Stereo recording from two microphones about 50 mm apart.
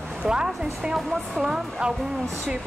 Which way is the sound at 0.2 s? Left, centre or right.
Centre.